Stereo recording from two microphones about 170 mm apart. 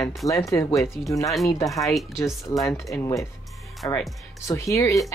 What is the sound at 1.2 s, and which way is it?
Speech, centre (ahead or behind).